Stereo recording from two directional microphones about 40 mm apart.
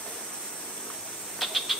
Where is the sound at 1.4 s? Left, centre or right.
Centre.